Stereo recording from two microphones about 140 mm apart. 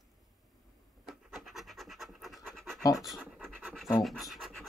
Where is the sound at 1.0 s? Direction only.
Centre (ahead or behind).